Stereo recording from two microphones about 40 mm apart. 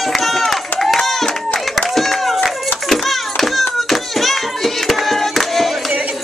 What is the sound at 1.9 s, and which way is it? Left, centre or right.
Clapping, centre.